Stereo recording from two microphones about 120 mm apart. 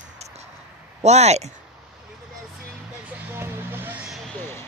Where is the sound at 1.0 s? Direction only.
65° right (ahead or behind).